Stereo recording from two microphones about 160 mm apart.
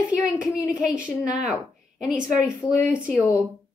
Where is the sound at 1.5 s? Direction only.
5° right (ahead or behind).